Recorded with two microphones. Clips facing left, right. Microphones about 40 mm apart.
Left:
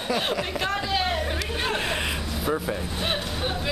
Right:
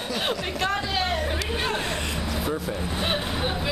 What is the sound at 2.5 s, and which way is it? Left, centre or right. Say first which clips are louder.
Speech: left 6 dB; centre.